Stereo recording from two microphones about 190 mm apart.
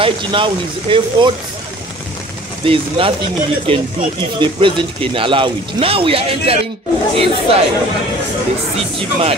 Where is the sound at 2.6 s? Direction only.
30° right (ahead or behind).